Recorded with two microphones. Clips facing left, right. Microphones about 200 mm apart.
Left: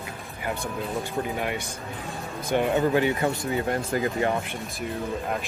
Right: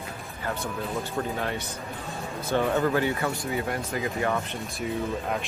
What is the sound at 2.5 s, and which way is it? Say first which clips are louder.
Speech: left 2 dB; 20° left (ahead or behind).